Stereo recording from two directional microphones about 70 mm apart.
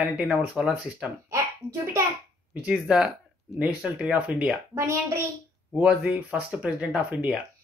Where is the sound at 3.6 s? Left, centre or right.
Right.